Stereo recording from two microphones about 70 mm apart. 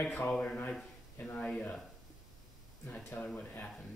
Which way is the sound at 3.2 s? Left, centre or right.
Centre.